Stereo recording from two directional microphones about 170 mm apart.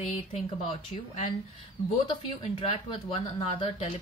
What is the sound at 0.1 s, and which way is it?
Speech, 35° left (ahead or behind).